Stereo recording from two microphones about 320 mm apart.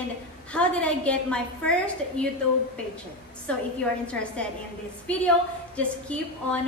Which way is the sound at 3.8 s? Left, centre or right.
Centre.